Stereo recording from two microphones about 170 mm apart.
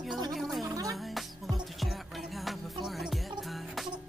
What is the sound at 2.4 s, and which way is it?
Music, centre (ahead or behind).